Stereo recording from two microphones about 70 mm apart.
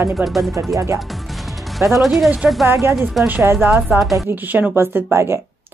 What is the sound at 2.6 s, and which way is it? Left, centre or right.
Speech, right.